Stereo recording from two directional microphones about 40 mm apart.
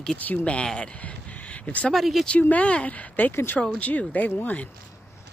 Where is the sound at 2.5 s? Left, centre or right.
Left.